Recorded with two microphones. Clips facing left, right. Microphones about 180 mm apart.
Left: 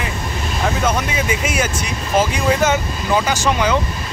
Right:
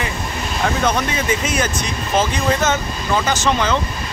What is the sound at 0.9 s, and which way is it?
Speech, 10° left (ahead or behind).